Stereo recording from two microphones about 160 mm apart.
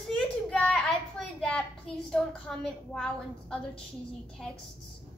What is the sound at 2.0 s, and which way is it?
A woman's voice, 5° left (ahead or behind).